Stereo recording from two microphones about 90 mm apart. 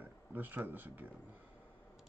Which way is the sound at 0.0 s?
20° right (ahead or behind).